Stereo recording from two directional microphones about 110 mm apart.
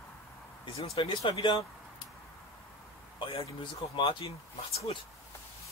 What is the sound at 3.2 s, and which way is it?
A man's voice, 50° left (ahead or behind).